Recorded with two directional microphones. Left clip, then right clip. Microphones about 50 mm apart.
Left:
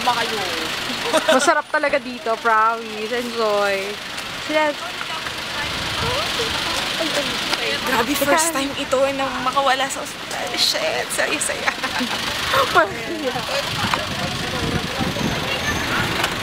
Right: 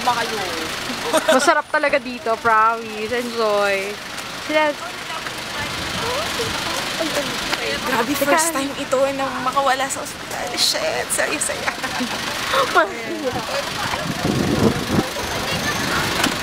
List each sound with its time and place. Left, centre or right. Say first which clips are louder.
0.0 s speech: even; centre
3.3 s speech: right 1 dB; centre
5.9 s vehicle: left 1 dB; centre
7.9 s speech: even; centre
12.0 s speech: left 1 dB; centre
15.5 s a sound: right 1 dB; right